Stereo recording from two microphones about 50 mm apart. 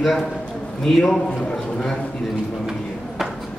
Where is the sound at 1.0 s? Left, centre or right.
Centre.